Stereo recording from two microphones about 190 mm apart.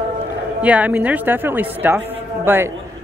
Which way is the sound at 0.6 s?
10° right (ahead or behind).